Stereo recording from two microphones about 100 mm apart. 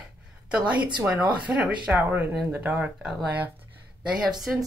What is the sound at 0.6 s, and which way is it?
Speech, 45° right (ahead or behind).